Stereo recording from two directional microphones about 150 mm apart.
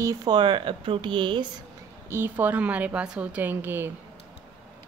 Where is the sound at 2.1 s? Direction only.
15° right (ahead or behind).